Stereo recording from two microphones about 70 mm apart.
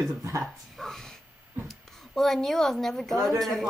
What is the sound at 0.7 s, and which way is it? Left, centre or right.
Speech, centre.